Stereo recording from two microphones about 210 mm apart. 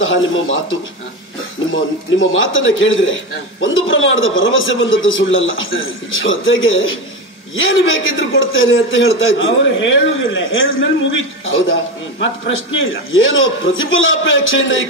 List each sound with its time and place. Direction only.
0.0 s a man's voice: 65° left (ahead or behind)
1.7 s a man's voice: 65° left (ahead or behind)